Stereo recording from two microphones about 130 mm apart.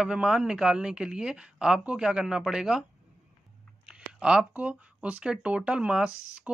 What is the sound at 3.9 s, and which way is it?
Speech, 5° right (ahead or behind).